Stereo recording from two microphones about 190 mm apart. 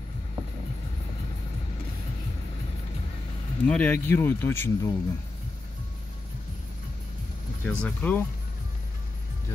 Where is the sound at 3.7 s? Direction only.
5° left (ahead or behind).